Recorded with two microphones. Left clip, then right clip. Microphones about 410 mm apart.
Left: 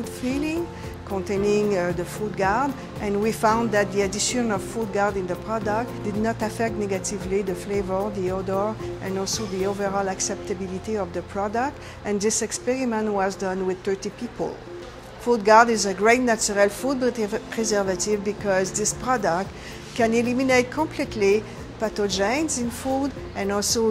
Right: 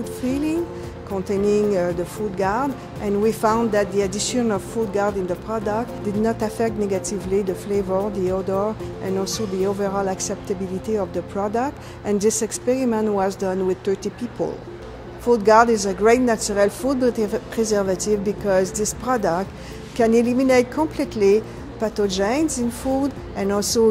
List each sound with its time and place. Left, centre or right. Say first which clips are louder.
0.0 s music: right 3 dB; left
2.3 s speech: even; left